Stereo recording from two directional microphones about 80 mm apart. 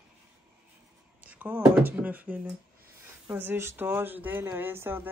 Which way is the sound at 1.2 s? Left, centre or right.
Centre.